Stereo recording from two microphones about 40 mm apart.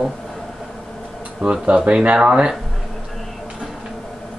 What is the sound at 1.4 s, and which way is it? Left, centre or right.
Speech, right.